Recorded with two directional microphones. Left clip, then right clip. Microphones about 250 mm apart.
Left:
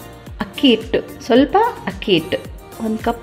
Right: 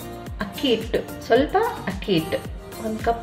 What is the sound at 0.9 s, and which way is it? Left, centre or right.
A woman's voice, left.